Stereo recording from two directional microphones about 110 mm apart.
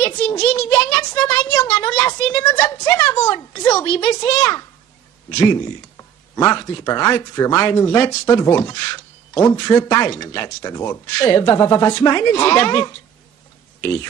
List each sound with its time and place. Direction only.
0.0 s a child's voice: 25° left (ahead or behind)
3.7 s speech: 15° left (ahead or behind)
4.4 s speech: 30° left (ahead or behind)
6.3 s speech: 25° left (ahead or behind)